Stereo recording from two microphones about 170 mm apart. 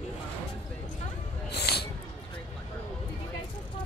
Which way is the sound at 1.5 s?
70° left (ahead or behind).